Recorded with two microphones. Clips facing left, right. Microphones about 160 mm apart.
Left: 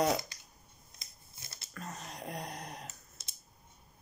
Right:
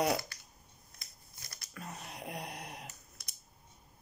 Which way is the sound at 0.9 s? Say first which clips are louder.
Left 1 dB; 25° left (ahead or behind).